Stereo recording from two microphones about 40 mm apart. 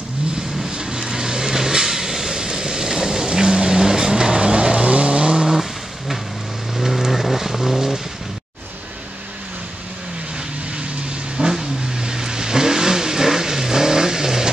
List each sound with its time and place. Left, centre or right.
0.7 s vehicle: right
6.8 s vehicle: centre
11.3 s vehicle: centre